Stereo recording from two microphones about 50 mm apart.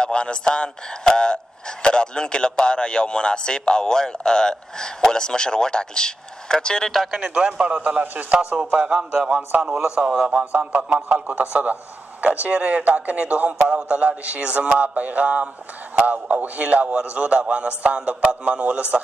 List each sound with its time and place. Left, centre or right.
0.0 s speech: centre
7.2 s a man's voice: centre